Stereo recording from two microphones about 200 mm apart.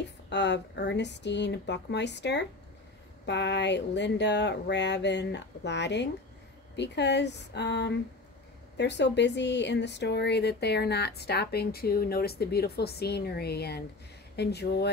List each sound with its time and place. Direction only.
0.3 s speech: 60° left (ahead or behind)